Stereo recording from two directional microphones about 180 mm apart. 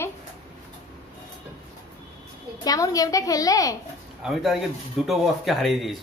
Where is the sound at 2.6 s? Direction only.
20° left (ahead or behind).